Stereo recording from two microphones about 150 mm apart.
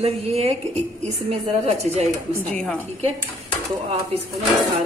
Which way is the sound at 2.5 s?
5° left (ahead or behind).